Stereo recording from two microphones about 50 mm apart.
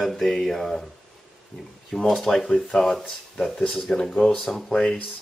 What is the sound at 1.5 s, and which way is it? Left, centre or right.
Speech, centre.